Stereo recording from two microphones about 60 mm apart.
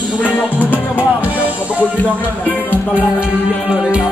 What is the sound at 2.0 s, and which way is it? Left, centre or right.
Music, left.